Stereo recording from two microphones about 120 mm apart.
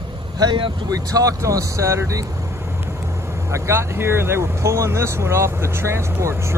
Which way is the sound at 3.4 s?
25° right (ahead or behind).